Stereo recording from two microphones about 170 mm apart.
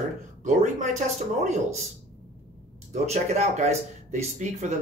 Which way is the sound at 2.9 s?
40° right (ahead or behind).